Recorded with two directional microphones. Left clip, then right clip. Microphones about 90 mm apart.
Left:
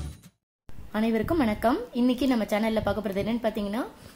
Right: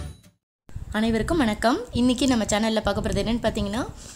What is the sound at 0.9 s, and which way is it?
A woman's voice, 10° right (ahead or behind).